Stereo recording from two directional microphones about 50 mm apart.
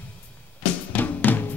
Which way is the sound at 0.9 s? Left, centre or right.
Left.